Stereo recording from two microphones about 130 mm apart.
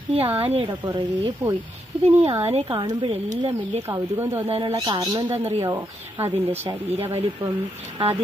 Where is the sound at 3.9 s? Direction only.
20° right (ahead or behind).